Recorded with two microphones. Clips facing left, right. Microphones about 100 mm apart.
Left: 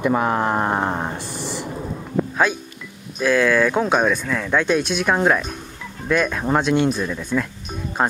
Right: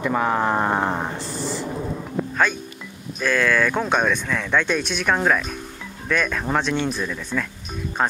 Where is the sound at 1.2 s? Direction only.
60° left (ahead or behind).